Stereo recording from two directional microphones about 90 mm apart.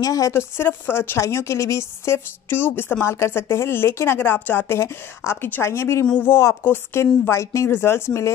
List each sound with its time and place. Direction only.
0.0 s speech: 40° left (ahead or behind)
0.3 s a woman's voice: 25° left (ahead or behind)